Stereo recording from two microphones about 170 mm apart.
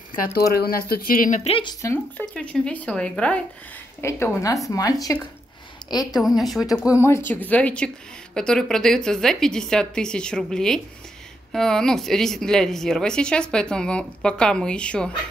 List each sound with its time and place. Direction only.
0.2 s speech: 65° left (ahead or behind); by 1.5 s 50° left (ahead or behind)
1.5 s speech: 25° left (ahead or behind)
2.3 s speech: 5° left (ahead or behind)
4.0 s speech: 20° left (ahead or behind)
6.2 s a woman's voice: centre (ahead or behind)
7.0 s a woman's voice: 15° left (ahead or behind)